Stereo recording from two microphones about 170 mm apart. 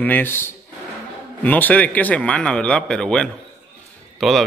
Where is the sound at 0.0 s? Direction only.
10° left (ahead or behind).